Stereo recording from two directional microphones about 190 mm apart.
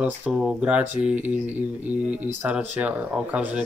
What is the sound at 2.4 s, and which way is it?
Speech, 10° right (ahead or behind).